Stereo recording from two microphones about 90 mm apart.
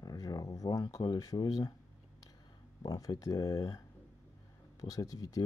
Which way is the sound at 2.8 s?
45° left (ahead or behind).